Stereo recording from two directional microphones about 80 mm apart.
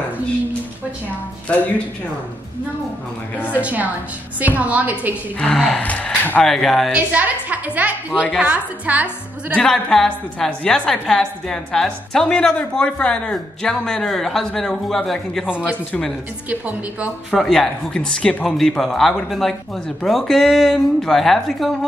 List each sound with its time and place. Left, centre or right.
3.4 s a woman's voice: centre
5.4 s speech: centre
5.8 s speech: centre
6.4 s speech: centre
6.9 s a woman's voice: centre
9.6 s a woman's voice: centre
15.4 s a woman's voice: centre
17.3 s a woman's voice: centre